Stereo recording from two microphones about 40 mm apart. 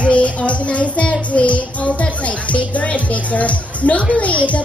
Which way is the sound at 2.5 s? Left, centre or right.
Left.